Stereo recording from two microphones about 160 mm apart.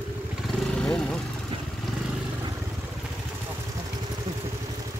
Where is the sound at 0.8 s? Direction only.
5° left (ahead or behind).